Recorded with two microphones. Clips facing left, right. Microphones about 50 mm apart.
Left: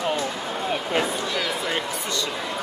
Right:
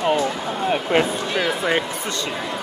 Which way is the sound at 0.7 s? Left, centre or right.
Right.